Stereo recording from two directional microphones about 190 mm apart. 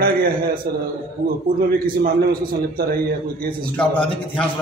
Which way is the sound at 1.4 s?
50° right (ahead or behind).